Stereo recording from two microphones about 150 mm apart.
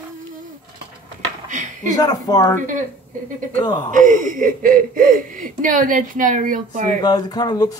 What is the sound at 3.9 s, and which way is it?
Speech, 60° right (ahead or behind).